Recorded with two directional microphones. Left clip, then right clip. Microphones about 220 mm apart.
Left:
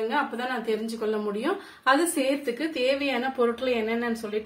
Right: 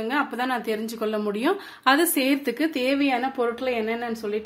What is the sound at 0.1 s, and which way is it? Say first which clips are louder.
A woman's voice: right 2 dB; 50° right (ahead or behind).